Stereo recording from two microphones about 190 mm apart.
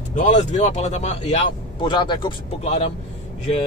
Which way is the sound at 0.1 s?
40° left (ahead or behind).